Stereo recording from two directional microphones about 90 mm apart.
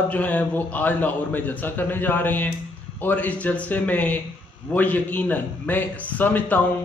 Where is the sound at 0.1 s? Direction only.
15° left (ahead or behind).